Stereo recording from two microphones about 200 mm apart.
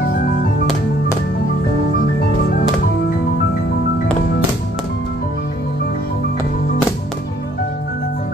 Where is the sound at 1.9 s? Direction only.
50° left (ahead or behind).